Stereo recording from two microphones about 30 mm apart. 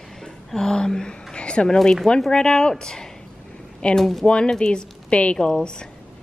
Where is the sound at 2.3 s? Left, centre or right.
Left.